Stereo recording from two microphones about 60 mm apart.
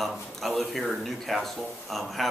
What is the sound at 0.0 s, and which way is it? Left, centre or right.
Speech, centre.